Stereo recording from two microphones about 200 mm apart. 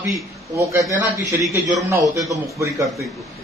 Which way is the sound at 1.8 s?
15° right (ahead or behind).